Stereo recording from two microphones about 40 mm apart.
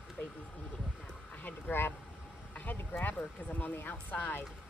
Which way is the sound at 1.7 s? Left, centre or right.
Left.